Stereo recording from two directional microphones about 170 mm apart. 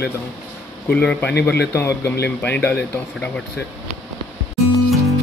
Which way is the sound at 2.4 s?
10° left (ahead or behind).